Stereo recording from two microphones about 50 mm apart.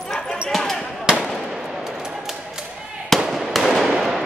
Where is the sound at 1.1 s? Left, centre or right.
Centre.